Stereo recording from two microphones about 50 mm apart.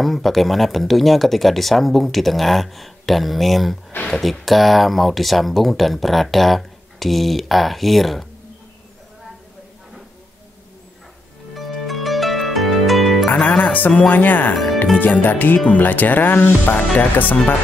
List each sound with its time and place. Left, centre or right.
0.0 s speech: centre
11.5 s harp: centre
13.6 s speech: left
14.5 s speech: centre
15.0 s speech: left